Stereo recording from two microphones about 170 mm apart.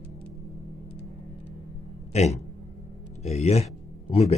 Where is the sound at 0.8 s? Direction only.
80° left.